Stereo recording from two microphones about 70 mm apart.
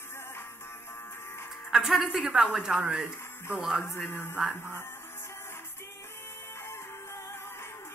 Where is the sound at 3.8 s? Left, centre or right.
Left.